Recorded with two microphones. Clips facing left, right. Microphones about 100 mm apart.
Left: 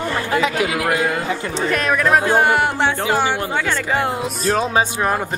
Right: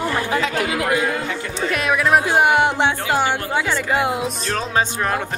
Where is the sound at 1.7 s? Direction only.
5° right (ahead or behind).